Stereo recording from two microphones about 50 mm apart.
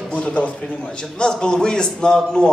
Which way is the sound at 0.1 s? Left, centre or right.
Left.